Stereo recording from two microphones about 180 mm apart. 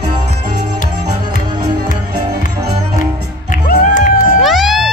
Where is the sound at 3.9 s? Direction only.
45° left (ahead or behind).